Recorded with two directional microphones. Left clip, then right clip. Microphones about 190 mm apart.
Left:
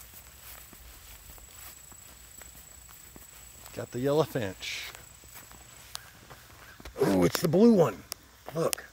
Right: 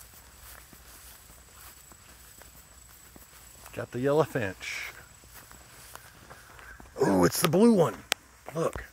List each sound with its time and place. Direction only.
3.7 s speech: 25° right (ahead or behind)
7.0 s a sound: 15° right (ahead or behind)
7.5 s speech: centre (ahead or behind)